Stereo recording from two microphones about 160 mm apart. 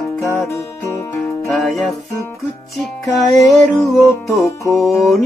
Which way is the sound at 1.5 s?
Centre (ahead or behind).